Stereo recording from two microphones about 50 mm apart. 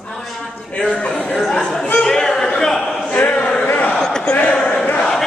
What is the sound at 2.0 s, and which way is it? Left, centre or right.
Chatter, centre.